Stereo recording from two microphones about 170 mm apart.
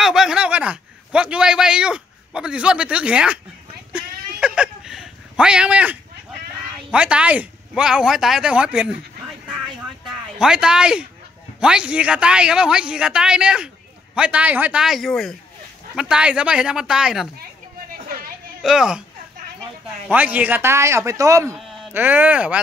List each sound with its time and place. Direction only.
0.0 s a man's voice: 5° right (ahead or behind)
3.9 s a sound: 5° right (ahead or behind)
6.9 s a man's voice: 5° right (ahead or behind)
10.0 s a man's voice: 5° right (ahead or behind)
18.6 s a man's voice: 5° right (ahead or behind)
20.1 s speech: 10° right (ahead or behind)